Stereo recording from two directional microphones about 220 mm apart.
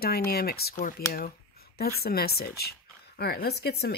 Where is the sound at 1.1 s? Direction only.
45° left (ahead or behind).